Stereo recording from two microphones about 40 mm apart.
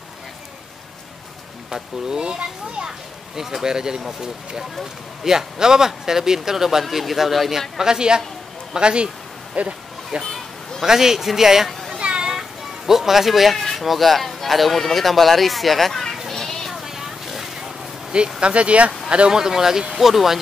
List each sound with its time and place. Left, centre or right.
1.7 s speech: centre
3.3 s speech: centre
5.2 s speech: centre
7.7 s speech: centre
9.6 s a sound: right
10.8 s speech: centre
12.0 s children playing: right
12.3 s speech: centre
16.3 s children playing: centre
16.7 s a sound: centre
18.4 s speech: right
19.4 s speech: centre